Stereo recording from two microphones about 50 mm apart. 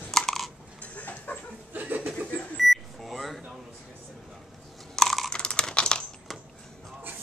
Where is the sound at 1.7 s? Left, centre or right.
Right.